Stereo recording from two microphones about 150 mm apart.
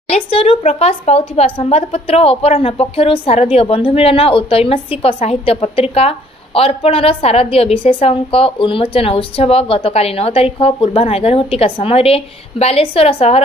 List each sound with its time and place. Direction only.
0.1 s a woman's voice: 40° left (ahead or behind)